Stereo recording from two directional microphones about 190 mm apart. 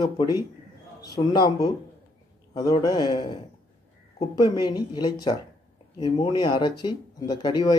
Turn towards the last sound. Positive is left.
turn(degrees=20)  # may be behind; listen again after turning